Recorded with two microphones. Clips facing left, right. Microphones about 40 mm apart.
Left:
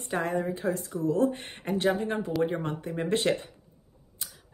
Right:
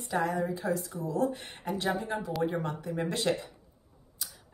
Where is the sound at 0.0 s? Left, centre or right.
Left.